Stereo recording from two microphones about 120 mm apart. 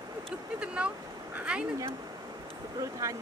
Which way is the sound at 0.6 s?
10° right (ahead or behind).